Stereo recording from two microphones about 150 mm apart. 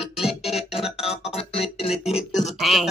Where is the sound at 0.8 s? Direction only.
5° right (ahead or behind).